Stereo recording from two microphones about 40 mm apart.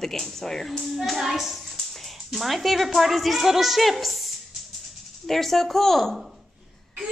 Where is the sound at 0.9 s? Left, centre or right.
Centre.